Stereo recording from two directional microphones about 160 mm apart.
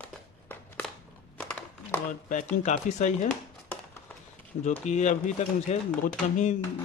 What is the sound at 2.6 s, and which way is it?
Speech, 45° left (ahead or behind).